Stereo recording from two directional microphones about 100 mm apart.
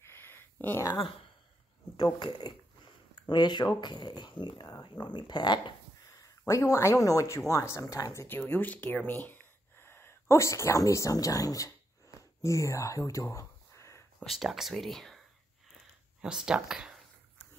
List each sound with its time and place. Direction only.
0.0 s a sound: 25° left (ahead or behind)
2.0 s speech: 45° left (ahead or behind)
6.0 s speech: 35° left (ahead or behind)
8.4 s speech: 20° left (ahead or behind); by 11.7 s 35° left (ahead or behind)
12.2 s a sound: 35° left (ahead or behind)
14.2 s speech: centre (ahead or behind)
16.2 s speech: 5° right (ahead or behind)